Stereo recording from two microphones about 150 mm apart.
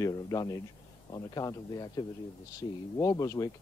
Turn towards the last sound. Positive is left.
turn(degrees=25)  # may be behind; listen again after turning